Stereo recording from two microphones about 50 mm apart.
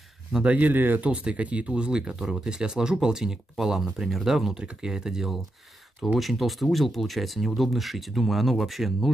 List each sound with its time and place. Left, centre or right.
0.4 s speech: right
1.0 s speech: right; by 9.1 s centre